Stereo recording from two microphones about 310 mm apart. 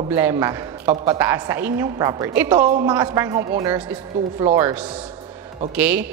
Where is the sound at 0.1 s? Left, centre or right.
Centre.